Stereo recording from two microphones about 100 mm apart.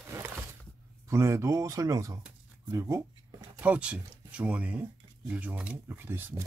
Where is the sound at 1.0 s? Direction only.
30° right (ahead or behind).